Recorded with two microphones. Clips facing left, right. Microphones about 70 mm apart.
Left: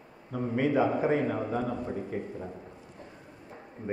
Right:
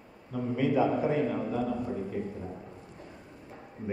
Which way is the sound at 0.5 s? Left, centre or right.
Left.